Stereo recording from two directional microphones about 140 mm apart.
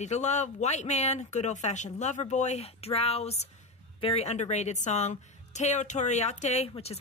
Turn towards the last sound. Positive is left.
turn(degrees=45)  # may be behind; listen again after turning